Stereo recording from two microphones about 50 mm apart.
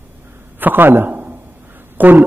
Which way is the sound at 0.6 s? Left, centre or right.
Right.